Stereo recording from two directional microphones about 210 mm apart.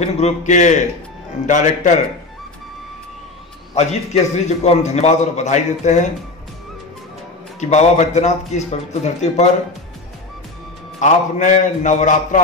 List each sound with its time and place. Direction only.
0.0 s a man's voice: 35° left (ahead or behind)
3.7 s a man's voice: 30° left (ahead or behind)
7.6 s a man's voice: 35° left (ahead or behind)
11.0 s a man's voice: 35° left (ahead or behind)